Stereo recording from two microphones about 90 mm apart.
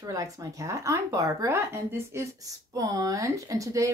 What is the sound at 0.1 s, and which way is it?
Speech, 35° right (ahead or behind).